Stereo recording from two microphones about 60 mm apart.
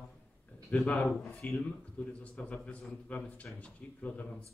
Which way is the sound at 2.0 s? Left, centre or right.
Left.